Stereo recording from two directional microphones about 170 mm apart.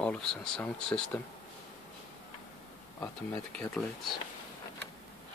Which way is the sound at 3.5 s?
5° left (ahead or behind).